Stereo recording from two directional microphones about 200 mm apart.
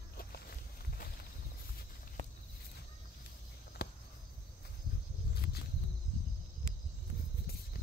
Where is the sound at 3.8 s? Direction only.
55° left (ahead or behind).